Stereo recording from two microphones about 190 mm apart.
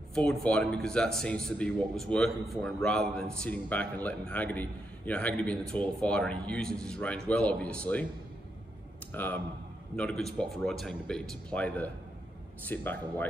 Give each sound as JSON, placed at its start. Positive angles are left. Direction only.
{"t": 0.1, "sound": "a man's voice", "side_deg": 5}
{"t": 9.1, "sound": "a man's voice", "side_deg": 10}